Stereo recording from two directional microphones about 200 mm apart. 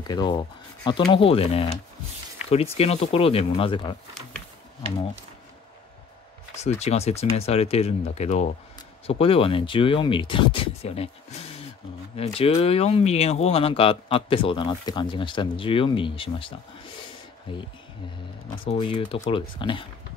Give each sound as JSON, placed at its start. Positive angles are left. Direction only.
{"t": 0.0, "sound": "speech", "side_deg": 20}
{"t": 6.5, "sound": "speech", "side_deg": 35}
{"t": 12.2, "sound": "speech", "side_deg": 30}
{"t": 18.7, "sound": "speech", "side_deg": 25}